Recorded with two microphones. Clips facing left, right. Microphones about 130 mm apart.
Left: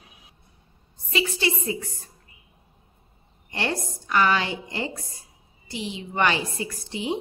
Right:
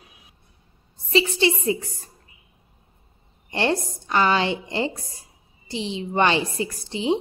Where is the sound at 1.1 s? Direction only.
25° right (ahead or behind).